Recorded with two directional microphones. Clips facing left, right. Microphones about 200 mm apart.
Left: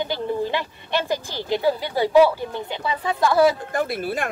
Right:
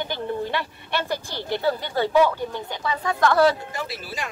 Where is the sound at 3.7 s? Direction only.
55° left (ahead or behind).